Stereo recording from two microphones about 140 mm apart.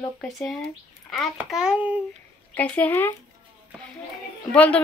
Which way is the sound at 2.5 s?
10° left (ahead or behind).